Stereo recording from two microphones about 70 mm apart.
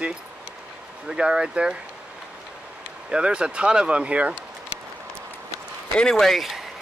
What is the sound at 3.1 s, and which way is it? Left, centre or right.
Speech, centre.